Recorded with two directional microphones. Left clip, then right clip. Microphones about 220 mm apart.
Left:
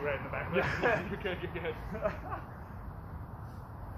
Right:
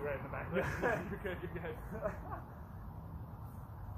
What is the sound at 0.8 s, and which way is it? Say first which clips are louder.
Speech: left 6 dB; 5° right (ahead or behind).